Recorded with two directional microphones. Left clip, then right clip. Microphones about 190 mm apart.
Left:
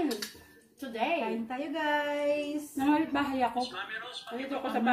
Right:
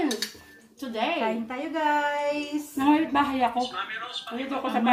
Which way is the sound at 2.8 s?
10° left (ahead or behind).